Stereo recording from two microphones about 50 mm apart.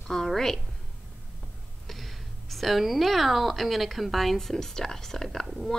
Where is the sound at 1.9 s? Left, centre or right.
Centre.